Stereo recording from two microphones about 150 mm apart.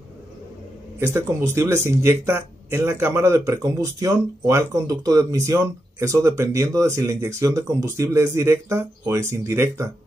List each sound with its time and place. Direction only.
0.9 s speech: 20° right (ahead or behind)